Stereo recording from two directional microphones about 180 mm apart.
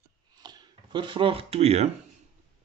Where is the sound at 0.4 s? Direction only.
25° right (ahead or behind).